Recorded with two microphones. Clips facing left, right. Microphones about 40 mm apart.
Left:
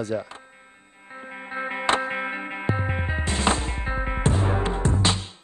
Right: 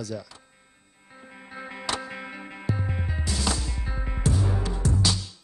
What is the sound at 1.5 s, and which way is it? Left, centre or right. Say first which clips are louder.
Music: left 8 dB; left.